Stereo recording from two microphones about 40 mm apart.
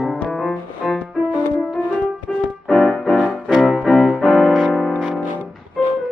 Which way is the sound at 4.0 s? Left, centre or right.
Centre.